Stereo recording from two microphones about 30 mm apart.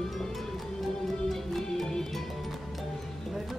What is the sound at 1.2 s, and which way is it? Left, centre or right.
Music, centre.